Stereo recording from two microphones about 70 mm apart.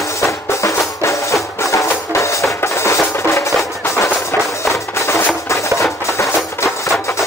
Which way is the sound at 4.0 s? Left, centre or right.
Left.